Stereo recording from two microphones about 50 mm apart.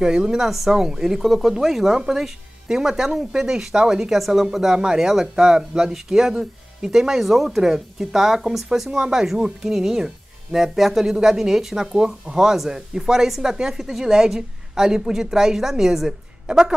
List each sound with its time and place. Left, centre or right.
0.0 s a woman's voice: centre